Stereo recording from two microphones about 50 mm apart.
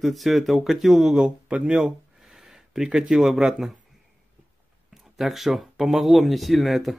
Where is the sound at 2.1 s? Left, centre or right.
Centre.